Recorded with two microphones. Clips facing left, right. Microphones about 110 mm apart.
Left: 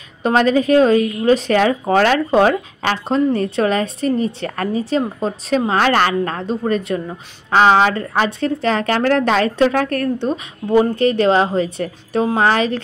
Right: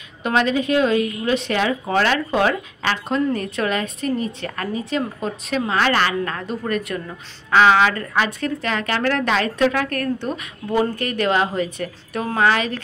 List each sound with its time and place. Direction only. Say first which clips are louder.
0.2 s a woman's voice: left 5 dB; 40° left (ahead or behind)
10.1 s a woman's voice: left 5 dB; 20° left (ahead or behind)